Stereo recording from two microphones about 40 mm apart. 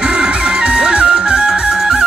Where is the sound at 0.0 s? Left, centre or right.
Centre.